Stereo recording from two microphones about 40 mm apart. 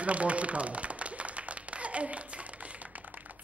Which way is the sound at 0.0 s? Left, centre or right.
Right.